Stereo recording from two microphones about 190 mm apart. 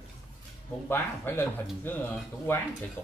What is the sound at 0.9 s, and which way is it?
Speech, 10° left (ahead or behind).